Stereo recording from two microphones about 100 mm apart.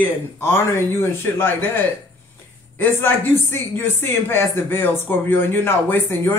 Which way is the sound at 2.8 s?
20° left (ahead or behind).